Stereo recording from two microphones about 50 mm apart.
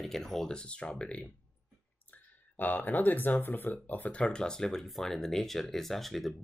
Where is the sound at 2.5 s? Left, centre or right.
Left.